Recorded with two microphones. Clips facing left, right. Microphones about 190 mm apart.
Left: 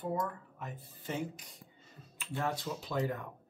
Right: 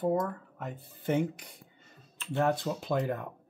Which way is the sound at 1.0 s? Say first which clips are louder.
Right 9 dB; 60° right (ahead or behind).